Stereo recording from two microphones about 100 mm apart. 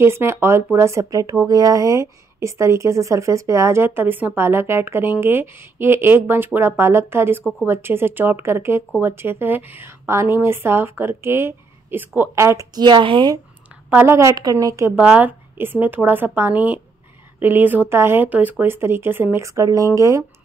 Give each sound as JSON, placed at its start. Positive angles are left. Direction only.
{"t": 0.0, "sound": "speech", "side_deg": -25}
{"t": 12.7, "sound": "a woman's voice", "side_deg": -50}
{"t": 13.8, "sound": "a woman's voice", "side_deg": -15}
{"t": 14.3, "sound": "a woman's voice", "side_deg": -40}
{"t": 14.9, "sound": "speech", "side_deg": -15}